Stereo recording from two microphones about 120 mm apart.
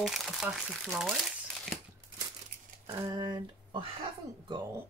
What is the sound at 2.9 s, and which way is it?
Speech, 30° right (ahead or behind).